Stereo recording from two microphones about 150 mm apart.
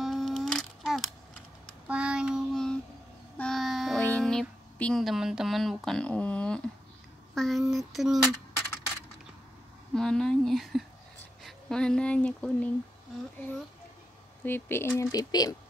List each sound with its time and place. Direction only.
0.0 s a sound: centre (ahead or behind)
1.9 s child singing: 5° right (ahead or behind)
3.3 s a sound: 5° left (ahead or behind)
5.9 s a woman's voice: 5° left (ahead or behind)
9.9 s a woman's voice: 5° left (ahead or behind)
14.4 s speech: 15° left (ahead or behind)